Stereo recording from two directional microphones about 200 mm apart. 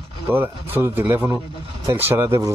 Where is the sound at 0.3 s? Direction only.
10° right (ahead or behind).